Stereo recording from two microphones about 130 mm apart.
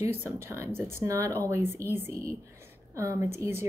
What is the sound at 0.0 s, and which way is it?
Speech, 15° right (ahead or behind).